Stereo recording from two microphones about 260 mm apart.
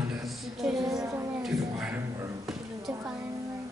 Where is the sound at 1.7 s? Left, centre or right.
Centre.